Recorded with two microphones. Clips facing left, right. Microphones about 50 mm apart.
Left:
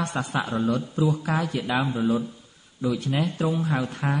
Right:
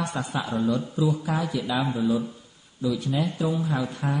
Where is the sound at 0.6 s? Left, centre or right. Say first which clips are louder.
Right 2 dB; left.